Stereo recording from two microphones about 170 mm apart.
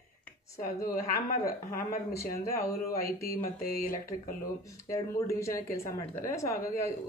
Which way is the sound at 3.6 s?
60° left (ahead or behind).